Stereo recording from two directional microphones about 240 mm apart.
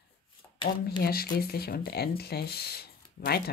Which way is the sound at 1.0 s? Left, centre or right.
Left.